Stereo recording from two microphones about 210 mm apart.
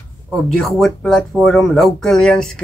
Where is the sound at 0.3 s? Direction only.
Centre (ahead or behind).